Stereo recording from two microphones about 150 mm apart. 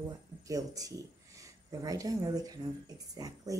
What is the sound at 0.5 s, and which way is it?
Speech, 25° right (ahead or behind).